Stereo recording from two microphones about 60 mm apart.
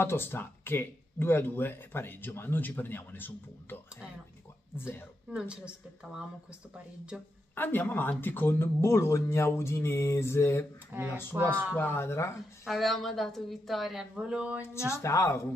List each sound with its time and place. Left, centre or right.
0.0 s speech: left
5.3 s a woman's voice: centre
7.1 s a woman's voice: centre
7.5 s speech: left
9.5 s a sound: left
10.9 s speech: right
11.7 s speech: left
12.0 s a sound: left
12.6 s a woman's voice: centre
14.2 s speech: centre
15.0 s a sound: left